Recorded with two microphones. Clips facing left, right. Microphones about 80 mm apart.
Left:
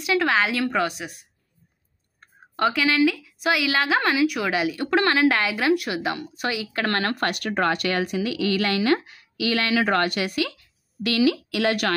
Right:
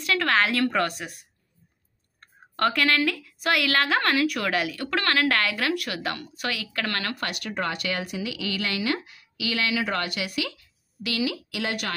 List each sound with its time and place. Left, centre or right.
0.0 s a woman's voice: centre
4.6 s speech: left
6.8 s speech: left
11.0 s a woman's voice: left